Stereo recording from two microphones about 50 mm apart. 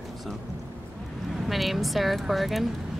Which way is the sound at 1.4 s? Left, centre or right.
Centre.